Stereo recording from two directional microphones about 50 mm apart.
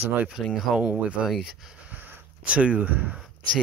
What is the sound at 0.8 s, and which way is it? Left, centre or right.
Speech, right.